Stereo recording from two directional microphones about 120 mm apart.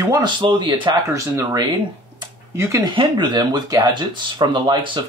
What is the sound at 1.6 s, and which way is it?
Speech, 40° right (ahead or behind).